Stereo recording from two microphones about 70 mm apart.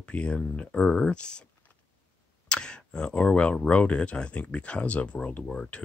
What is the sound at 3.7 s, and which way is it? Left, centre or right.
Speech, centre.